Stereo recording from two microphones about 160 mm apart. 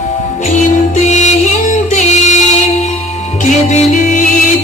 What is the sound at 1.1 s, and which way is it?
Music, 50° left (ahead or behind).